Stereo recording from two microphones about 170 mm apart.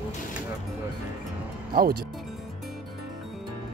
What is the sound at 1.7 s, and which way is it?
Speech, 60° right (ahead or behind).